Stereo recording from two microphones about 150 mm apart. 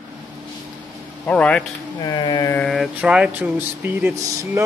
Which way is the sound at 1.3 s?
10° left (ahead or behind).